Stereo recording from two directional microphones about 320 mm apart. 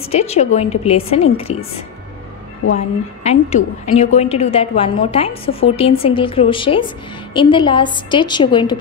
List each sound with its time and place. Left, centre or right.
0.1 s a woman's voice: centre
3.3 s a woman's voice: left